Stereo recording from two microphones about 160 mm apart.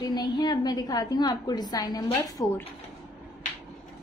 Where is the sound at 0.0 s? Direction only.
25° left (ahead or behind).